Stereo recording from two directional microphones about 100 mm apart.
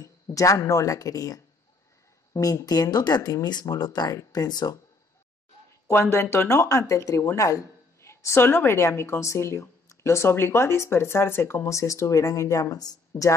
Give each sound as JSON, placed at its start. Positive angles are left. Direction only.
{"t": 0.0, "sound": "speech", "side_deg": 35}
{"t": 5.9, "sound": "speech", "side_deg": 25}